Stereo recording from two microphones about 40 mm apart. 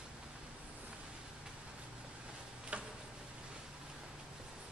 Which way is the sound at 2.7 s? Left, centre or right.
Right.